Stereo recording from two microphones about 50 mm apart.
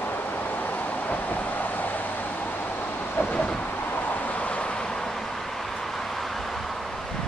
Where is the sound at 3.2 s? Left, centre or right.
Left.